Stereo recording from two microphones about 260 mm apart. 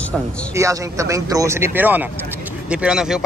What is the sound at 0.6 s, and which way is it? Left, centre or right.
Speech, centre.